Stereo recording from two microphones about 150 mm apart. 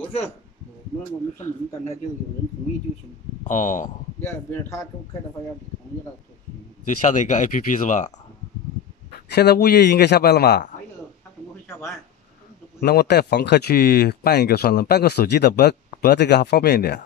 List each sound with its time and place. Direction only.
3.4 s speech: 55° left (ahead or behind)
4.3 s a man's voice: 20° left (ahead or behind)
6.8 s speech: 55° left (ahead or behind)
9.3 s speech: 90° left
12.8 s speech: 90° left